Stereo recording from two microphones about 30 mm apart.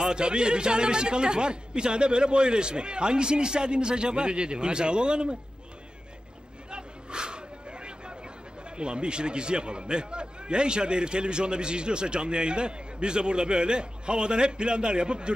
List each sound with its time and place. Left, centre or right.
0.1 s a man's voice: right
6.7 s a sound: right
8.7 s a man's voice: right